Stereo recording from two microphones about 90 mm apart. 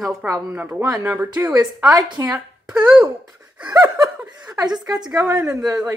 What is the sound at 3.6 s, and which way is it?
Laughter, 50° right (ahead or behind).